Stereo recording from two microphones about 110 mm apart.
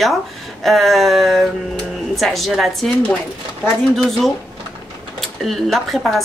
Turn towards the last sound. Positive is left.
turn(degrees=0)  # may be behind; listen again after turning